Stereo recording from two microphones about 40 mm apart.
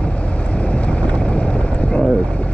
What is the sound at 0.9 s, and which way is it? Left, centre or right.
Boat, left.